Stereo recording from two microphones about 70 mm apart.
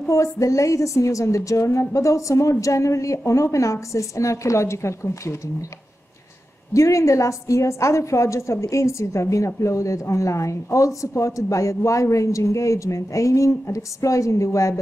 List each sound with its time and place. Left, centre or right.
0.1 s speech: left
6.7 s speech: left